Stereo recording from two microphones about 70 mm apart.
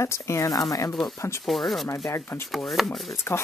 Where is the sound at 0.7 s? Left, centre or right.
Left.